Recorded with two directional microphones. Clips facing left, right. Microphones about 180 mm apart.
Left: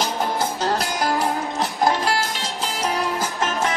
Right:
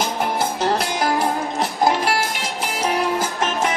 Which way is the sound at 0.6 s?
20° right (ahead or behind).